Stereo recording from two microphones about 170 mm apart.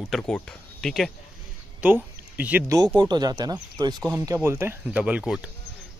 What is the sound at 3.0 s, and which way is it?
Speech, 25° right (ahead or behind).